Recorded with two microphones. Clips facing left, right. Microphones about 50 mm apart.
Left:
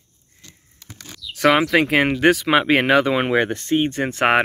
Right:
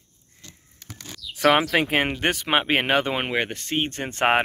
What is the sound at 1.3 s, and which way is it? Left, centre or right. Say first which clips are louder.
Speech: left 3 dB; left.